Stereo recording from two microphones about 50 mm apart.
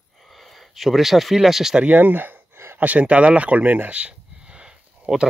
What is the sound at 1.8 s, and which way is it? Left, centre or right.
Speech, right.